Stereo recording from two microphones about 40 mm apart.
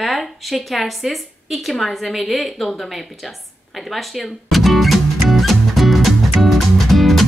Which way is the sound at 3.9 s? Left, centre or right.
Centre.